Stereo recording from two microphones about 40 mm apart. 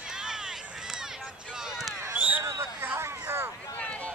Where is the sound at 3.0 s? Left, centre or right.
Right.